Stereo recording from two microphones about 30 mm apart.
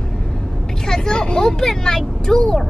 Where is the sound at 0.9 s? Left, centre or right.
Left.